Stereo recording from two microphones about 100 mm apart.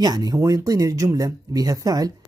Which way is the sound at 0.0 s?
40° right (ahead or behind).